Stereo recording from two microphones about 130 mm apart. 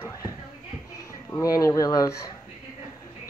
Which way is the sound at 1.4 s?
25° left (ahead or behind).